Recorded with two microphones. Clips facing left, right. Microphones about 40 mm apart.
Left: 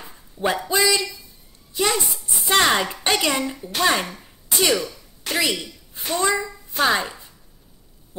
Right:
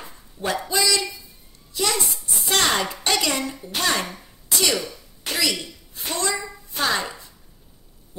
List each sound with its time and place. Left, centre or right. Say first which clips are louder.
0.5 s a man's voice: left 3 dB; centre